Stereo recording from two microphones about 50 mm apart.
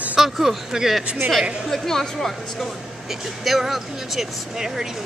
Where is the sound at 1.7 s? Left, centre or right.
Centre.